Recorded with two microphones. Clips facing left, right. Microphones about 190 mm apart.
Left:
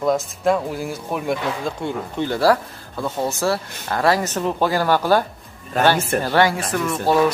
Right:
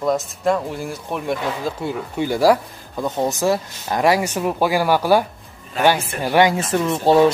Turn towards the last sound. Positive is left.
turn(degrees=-25)  # may be behind; listen again after turning